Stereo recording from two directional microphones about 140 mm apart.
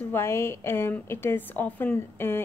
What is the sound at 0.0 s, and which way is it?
A woman's voice, 15° left (ahead or behind).